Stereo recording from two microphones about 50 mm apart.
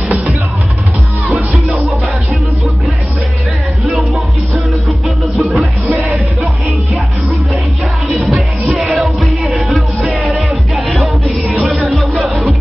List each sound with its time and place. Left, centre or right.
1.3 s music: centre
5.0 s music: centre
8.6 s music: centre
9.0 s music: centre